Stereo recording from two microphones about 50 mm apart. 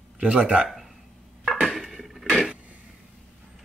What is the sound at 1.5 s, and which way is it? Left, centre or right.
Dishes, centre.